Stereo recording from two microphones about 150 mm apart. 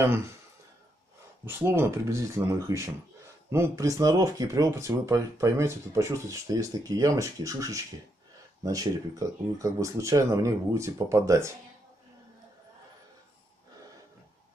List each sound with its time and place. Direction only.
0.0 s speech: 15° right (ahead or behind)
1.4 s speech: 15° right (ahead or behind)